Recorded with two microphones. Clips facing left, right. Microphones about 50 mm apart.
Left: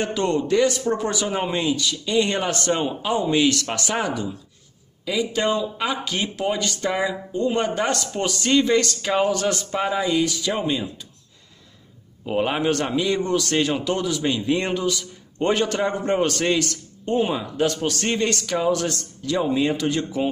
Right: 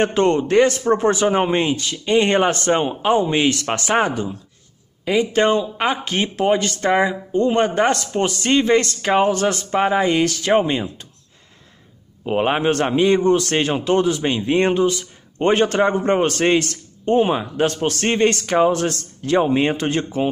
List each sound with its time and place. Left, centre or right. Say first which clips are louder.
0.0 s a man's voice: right 6 dB; right
10.6 s a man's voice: right 4 dB; right
12.3 s a man's voice: right 3 dB; right